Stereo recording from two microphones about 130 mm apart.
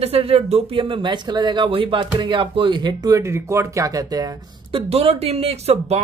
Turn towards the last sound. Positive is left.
turn(degrees=-55)  # may be behind; listen again after turning